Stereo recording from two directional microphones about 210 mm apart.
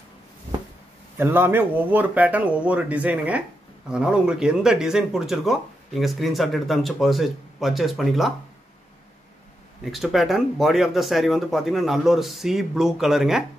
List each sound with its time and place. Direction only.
1.1 s speech: 10° right (ahead or behind)
9.8 s speech: centre (ahead or behind)